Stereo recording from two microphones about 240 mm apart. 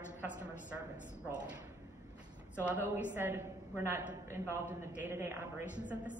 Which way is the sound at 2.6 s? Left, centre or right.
Centre.